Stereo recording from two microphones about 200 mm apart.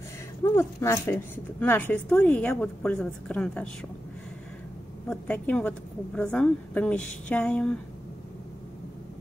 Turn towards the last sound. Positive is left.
turn(degrees=5)  # may be behind; listen again after turning